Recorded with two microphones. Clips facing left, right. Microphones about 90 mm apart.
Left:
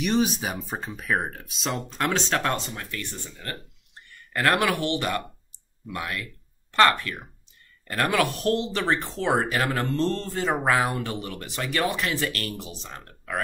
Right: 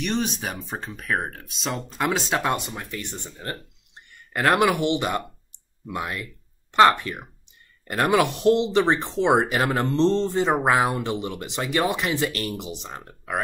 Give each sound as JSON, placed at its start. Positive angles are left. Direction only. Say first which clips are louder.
{"t": 0.0, "sound": "speech", "louder": "left 2 dB", "side_deg": 5}